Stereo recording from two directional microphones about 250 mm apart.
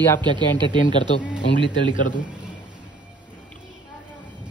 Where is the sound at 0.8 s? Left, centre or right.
Left.